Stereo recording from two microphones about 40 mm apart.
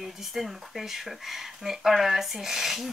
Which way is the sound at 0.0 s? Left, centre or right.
Centre.